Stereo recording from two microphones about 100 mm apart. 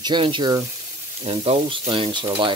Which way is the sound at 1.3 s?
80° right.